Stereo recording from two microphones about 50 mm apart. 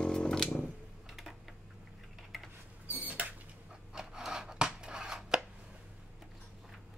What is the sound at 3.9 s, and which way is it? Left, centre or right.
Chopping, centre.